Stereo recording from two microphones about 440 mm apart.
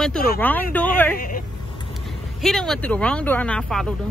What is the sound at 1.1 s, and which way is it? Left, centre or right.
Speech, centre.